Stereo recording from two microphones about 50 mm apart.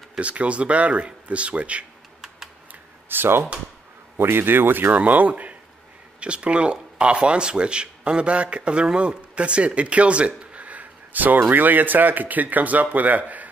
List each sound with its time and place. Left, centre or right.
0.2 s speech: right
3.1 s a man's voice: right
4.9 s speech: right